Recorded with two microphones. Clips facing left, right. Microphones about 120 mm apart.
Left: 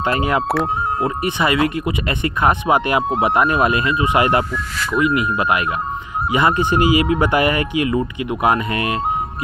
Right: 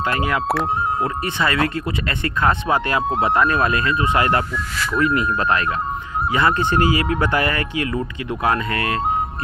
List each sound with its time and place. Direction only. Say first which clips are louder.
0.0 s speech: left 3 dB; 25° left (ahead or behind)